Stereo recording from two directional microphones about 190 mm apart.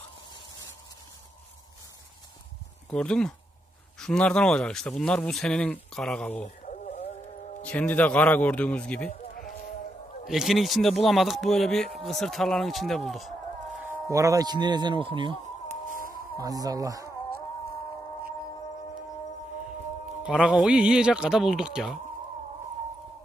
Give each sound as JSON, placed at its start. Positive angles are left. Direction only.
{"t": 2.9, "sound": "speech", "side_deg": 5}
{"t": 6.4, "sound": "a sound", "side_deg": 40}
{"t": 7.6, "sound": "a man's voice", "side_deg": 10}
{"t": 9.3, "sound": "a sound", "side_deg": 50}
{"t": 10.2, "sound": "speech", "side_deg": 0}
{"t": 14.1, "sound": "speech", "side_deg": -15}
{"t": 16.6, "sound": "speech", "side_deg": -20}
{"t": 20.2, "sound": "speech", "side_deg": -5}